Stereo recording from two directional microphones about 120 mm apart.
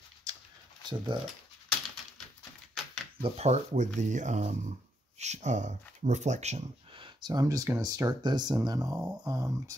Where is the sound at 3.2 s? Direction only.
60° right (ahead or behind).